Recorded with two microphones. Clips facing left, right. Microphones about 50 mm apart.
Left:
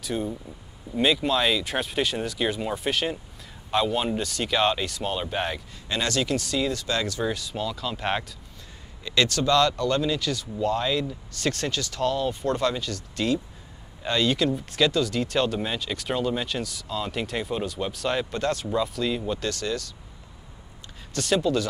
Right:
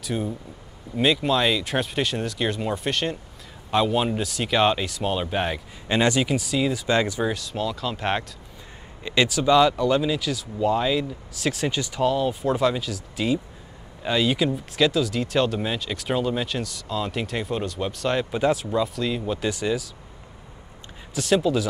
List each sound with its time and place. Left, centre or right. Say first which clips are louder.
0.0 s speech: right 1 dB; centre
5.9 s speech: right 5 dB; right
6.9 s speech: right 5 dB; right
7.3 s speech: right 3 dB; centre
9.0 s speech: right 2 dB; centre
11.7 s speech: right 3 dB; centre
19.4 s speech: right 4 dB; centre
21.1 s speech: right 2 dB; centre